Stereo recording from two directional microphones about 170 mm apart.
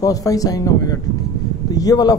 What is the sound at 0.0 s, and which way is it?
A man's voice, 20° left (ahead or behind).